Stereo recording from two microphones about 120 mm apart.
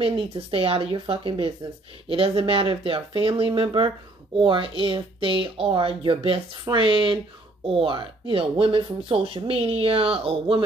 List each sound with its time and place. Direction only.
0.0 s speech: 50° right (ahead or behind)